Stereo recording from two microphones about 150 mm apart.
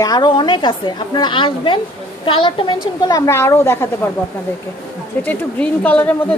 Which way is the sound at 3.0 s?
25° left (ahead or behind).